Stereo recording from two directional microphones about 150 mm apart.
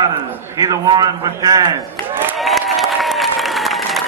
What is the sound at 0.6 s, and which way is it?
A man's voice, 25° right (ahead or behind).